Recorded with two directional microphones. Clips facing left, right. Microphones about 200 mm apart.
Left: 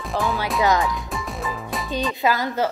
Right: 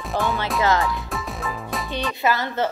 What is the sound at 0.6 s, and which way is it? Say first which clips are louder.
Speech: left 1 dB; 15° left (ahead or behind).